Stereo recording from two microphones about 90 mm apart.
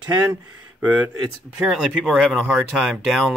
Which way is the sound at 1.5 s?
10° right (ahead or behind).